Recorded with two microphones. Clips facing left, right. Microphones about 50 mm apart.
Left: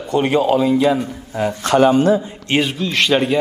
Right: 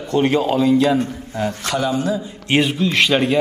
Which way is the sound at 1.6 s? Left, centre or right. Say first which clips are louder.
Left 10 dB; left.